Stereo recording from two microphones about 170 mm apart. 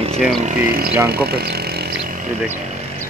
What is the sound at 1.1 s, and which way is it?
Speech, 70° right (ahead or behind).